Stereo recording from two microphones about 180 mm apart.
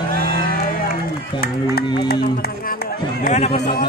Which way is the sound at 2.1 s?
60° left (ahead or behind).